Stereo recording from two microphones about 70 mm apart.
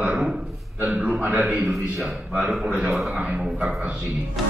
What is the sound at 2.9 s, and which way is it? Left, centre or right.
Speech, centre.